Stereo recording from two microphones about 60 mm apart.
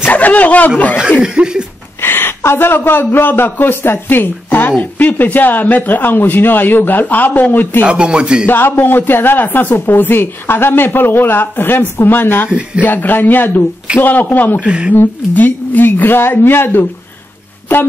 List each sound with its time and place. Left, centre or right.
0.0 s speech: left
1.2 s speech: centre
2.0 s a man's voice: left
7.8 s speech: centre
8.5 s speech: left
12.4 s speech: centre
12.8 s speech: left
14.6 s speech: centre
15.0 s speech: left